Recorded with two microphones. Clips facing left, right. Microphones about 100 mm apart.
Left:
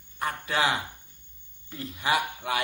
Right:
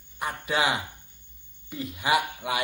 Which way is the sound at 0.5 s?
15° right (ahead or behind).